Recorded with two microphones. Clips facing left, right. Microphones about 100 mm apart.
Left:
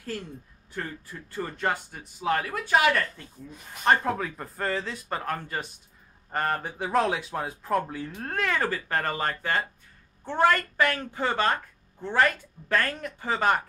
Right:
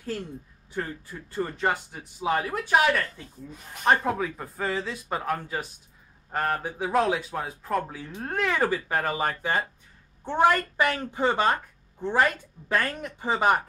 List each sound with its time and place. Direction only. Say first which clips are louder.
0.8 s a woman's voice: right 3 dB; 15° right (ahead or behind)